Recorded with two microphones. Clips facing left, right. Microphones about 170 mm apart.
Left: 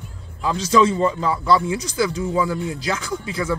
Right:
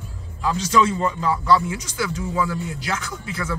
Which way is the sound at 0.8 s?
30° left (ahead or behind).